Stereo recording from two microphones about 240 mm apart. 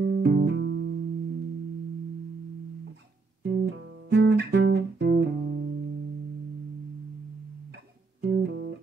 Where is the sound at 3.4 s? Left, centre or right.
Right.